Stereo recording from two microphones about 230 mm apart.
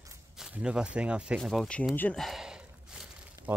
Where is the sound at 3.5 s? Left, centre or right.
Centre.